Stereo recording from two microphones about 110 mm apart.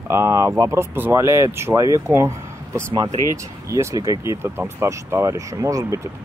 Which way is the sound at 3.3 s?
25° right (ahead or behind).